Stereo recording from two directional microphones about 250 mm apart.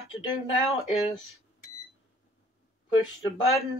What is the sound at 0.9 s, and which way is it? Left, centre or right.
Speech, left.